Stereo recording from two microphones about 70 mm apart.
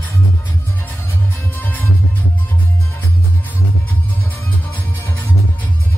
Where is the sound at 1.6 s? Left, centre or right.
Left.